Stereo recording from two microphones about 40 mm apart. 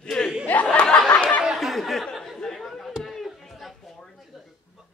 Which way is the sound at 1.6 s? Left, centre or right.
Centre.